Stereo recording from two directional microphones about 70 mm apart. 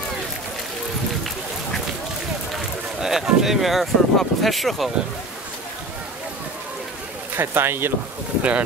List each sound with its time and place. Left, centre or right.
2.5 s speech: centre
7.3 s speech: right
8.4 s speech: centre